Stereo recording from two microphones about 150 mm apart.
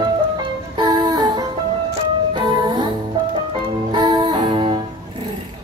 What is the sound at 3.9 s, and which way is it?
Music, 30° right (ahead or behind).